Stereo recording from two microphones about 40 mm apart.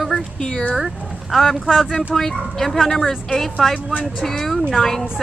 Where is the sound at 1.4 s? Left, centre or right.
Centre.